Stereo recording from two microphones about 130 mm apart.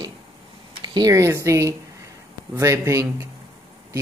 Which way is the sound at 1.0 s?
25° right (ahead or behind).